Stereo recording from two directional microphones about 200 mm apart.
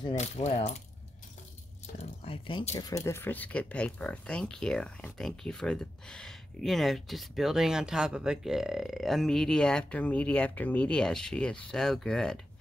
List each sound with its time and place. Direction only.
0.1 s mechanisms: 35° left (ahead or behind)
2.0 s speech: 30° left (ahead or behind)
2.7 s speech: 15° left (ahead or behind)